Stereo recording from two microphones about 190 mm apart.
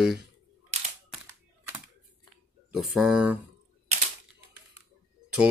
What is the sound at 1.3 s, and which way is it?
Typing, 15° right (ahead or behind).